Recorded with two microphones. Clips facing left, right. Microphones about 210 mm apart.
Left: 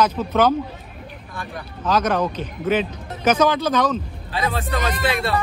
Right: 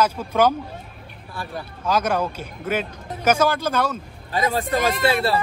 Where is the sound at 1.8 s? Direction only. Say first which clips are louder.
Left 2 dB; 10° right (ahead or behind).